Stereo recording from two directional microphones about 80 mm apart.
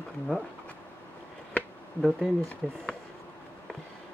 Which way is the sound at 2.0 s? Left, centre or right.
Centre.